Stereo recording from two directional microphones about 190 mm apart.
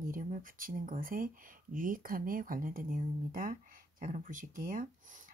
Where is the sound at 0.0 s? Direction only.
45° right (ahead or behind).